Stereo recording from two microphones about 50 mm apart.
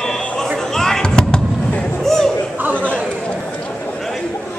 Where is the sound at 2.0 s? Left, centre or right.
Centre.